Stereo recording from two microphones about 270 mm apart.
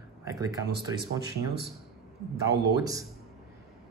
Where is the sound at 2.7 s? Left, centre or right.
Centre.